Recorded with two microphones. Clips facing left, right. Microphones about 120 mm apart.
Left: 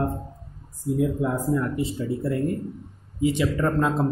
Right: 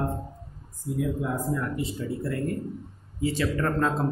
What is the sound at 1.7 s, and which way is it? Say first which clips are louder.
Speech: left 4 dB; 25° left (ahead or behind).